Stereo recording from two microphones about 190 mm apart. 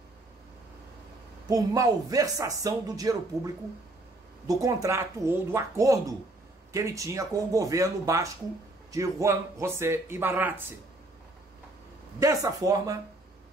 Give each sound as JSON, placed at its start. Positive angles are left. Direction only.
{"t": 1.5, "sound": "speech", "side_deg": -20}
{"t": 4.5, "sound": "a man's voice", "side_deg": -15}
{"t": 12.2, "sound": "a man's voice", "side_deg": -15}